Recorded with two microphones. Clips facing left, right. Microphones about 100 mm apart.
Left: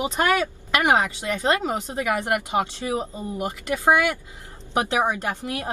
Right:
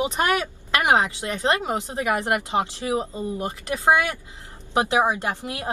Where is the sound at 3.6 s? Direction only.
20° right (ahead or behind).